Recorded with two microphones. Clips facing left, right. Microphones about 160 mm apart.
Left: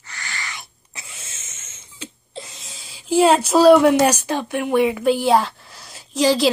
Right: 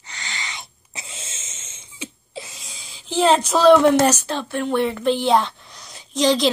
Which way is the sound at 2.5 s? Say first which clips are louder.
Left 1 dB; centre (ahead or behind).